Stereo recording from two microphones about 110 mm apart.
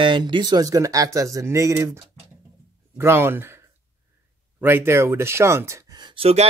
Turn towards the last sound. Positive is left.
turn(degrees=-70)  # may be behind; listen again after turning